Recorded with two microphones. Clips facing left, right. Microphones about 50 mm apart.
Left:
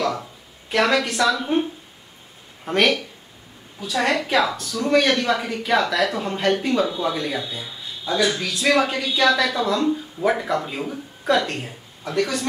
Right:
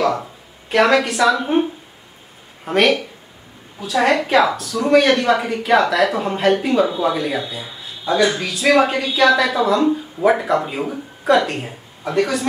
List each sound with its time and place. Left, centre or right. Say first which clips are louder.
0.0 s a woman's voice: right 5 dB; centre